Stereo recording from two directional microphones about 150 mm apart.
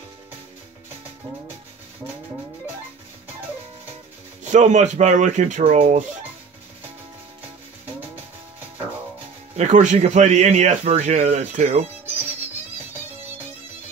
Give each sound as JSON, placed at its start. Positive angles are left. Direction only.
{"t": 4.5, "sound": "speech", "side_deg": -55}
{"t": 9.6, "sound": "speech", "side_deg": -50}